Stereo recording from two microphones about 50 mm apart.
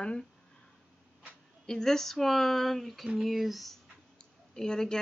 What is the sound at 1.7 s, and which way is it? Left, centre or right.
Speech, centre.